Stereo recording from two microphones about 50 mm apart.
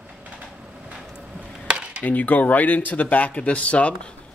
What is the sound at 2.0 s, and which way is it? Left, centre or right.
Speech, left.